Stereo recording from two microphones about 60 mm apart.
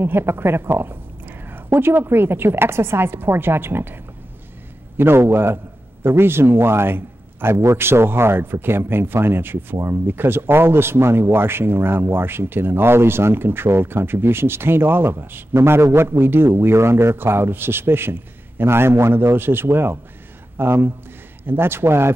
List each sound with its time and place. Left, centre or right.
0.0 s a man's voice: right